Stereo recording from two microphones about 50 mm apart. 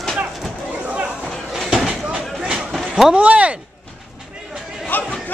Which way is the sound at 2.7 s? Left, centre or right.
Centre.